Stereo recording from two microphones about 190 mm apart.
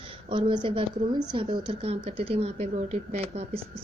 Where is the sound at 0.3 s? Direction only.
25° right (ahead or behind).